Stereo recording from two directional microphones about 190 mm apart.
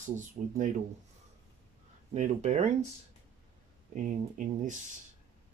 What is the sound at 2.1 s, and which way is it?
Speech, 40° right (ahead or behind).